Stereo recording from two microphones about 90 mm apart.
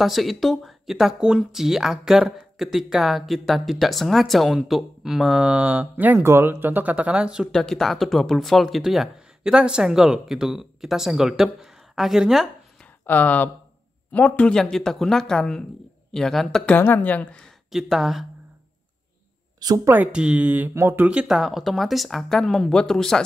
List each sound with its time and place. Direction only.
0.0 s speech: centre (ahead or behind)
5.4 s speech: 15° right (ahead or behind)
6.2 s speech: 30° right (ahead or behind); by 7.4 s 10° right (ahead or behind)
7.5 s speech: 5° left (ahead or behind)
13.0 s a woman's voice: 20° left (ahead or behind)
14.5 s speech: 5° left (ahead or behind)
16.7 s a woman's voice: 20° left (ahead or behind)
17.6 s speech: 5° right (ahead or behind)
19.9 s speech: 15° right (ahead or behind)
21.1 s speech: 10° right (ahead or behind)